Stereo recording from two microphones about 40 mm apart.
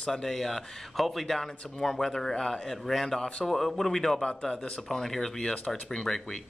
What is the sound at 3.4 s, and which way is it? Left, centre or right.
Speech, centre.